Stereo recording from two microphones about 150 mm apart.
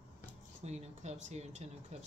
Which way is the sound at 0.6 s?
45° right (ahead or behind).